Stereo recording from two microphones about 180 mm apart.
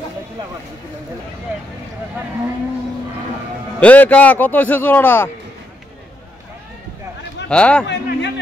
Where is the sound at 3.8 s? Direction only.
10° left (ahead or behind).